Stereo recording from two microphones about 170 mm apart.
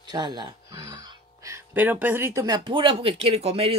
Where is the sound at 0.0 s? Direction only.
25° right (ahead or behind).